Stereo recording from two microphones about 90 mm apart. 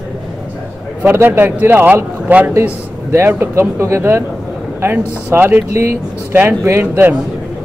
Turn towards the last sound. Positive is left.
turn(degrees=-30)  # may be behind; listen again after turning